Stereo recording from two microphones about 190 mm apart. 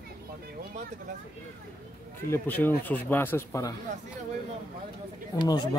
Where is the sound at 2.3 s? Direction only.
10° left (ahead or behind).